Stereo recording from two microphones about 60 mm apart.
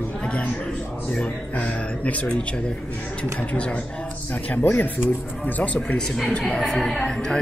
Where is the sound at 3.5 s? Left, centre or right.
Centre.